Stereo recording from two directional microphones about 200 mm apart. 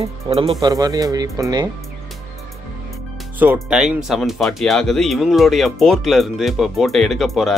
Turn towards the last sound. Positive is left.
turn(degrees=0)  # may be behind; listen again after turning